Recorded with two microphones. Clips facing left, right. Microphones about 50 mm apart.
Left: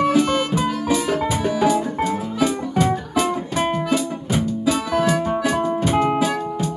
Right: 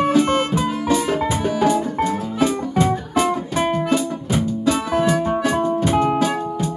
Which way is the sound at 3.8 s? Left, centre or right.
Right.